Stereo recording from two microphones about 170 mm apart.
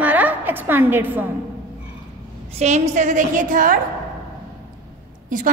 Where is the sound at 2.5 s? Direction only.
40° right (ahead or behind).